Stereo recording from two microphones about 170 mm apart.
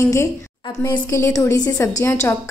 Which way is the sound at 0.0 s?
15° left (ahead or behind).